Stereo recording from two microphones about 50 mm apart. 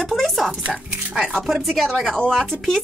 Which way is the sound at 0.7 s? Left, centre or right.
Right.